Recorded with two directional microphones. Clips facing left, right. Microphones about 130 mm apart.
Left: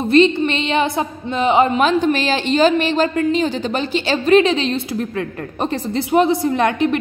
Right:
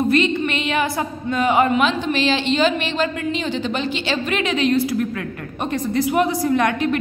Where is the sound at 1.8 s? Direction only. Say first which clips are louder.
Left 3 dB; 45° left (ahead or behind).